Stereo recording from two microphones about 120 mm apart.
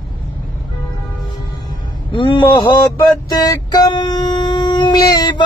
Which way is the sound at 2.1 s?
40° left (ahead or behind).